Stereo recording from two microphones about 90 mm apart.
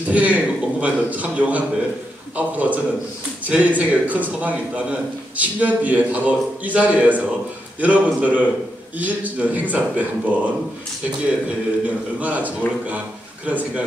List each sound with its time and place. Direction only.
0.1 s a man's voice: 15° right (ahead or behind)
12.2 s a man's voice: 20° right (ahead or behind)